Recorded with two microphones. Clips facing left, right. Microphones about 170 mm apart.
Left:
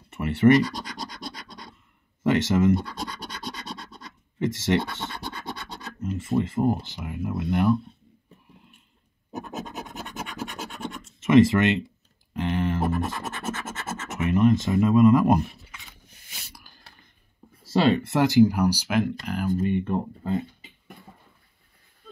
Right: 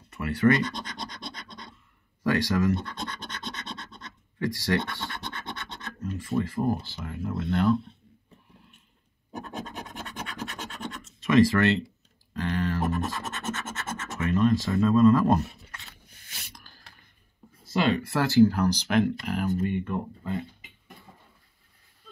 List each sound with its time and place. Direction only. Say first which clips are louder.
0.1 s scratch: left 3 dB; 25° left (ahead or behind)
2.2 s speech: left 4 dB; 25° left (ahead or behind)
4.4 s speech: left 3 dB; 25° left (ahead or behind)
9.4 s scratch: left 2 dB; 10° left (ahead or behind)
11.1 s speech: left 3 dB; 25° left (ahead or behind)
12.4 s scratch: left 2 dB; 20° left (ahead or behind)
13.5 s scratch: left 1 dB; 10° left (ahead or behind)
14.0 s speech: left 3 dB; 20° left (ahead or behind)
17.7 s speech: left 4 dB; 30° left (ahead or behind); by 19.5 s centre (ahead or behind)
19.6 s speech: left 4 dB; 25° left (ahead or behind)